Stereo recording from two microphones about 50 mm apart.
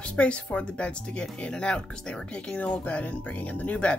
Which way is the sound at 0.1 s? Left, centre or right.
Left.